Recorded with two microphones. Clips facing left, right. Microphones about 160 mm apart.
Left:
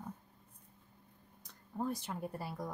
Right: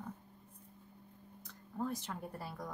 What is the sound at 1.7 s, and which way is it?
Speech, 15° left (ahead or behind).